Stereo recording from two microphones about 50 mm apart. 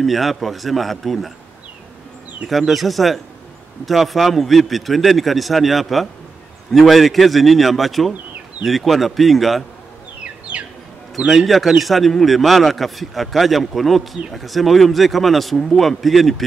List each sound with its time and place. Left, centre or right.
0.0 s a man's voice: centre
2.4 s a man's voice: centre
10.5 s bird: right
11.1 s a man's voice: centre